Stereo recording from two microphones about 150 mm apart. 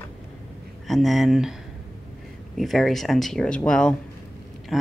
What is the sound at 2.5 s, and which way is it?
Speech, centre (ahead or behind).